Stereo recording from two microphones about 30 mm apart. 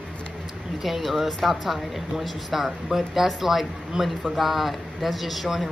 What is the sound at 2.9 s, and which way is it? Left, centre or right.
Speech, centre.